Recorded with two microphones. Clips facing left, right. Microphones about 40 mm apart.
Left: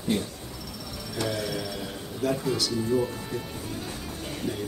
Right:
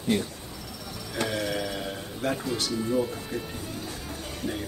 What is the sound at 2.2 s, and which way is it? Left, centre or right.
Speech, right.